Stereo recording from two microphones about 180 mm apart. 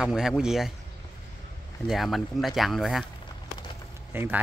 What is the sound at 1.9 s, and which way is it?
Speech, centre (ahead or behind).